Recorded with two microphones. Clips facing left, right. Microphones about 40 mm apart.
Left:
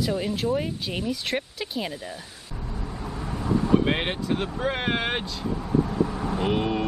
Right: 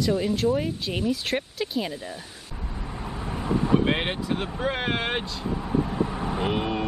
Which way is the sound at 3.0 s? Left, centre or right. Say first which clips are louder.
Right 1 dB; centre.